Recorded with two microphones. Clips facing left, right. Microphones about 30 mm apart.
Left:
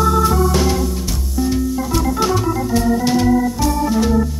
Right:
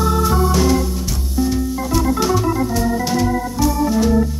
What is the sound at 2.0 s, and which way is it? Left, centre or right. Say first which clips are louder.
Organ: right 1 dB; centre.